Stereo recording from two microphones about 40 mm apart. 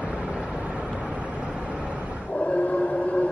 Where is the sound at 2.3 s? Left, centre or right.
Left.